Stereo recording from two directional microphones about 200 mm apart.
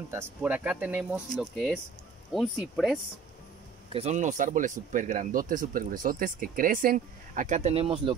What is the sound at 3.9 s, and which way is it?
Speech, 35° right (ahead or behind).